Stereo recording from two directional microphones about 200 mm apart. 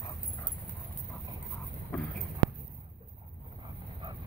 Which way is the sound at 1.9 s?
10° left (ahead or behind).